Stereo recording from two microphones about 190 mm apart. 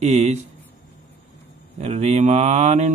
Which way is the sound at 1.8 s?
35° right (ahead or behind).